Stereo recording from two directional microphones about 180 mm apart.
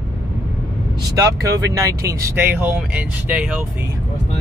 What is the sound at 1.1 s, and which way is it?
Speech, 20° right (ahead or behind).